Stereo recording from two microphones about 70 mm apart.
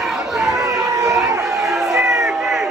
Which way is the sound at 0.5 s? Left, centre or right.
Right.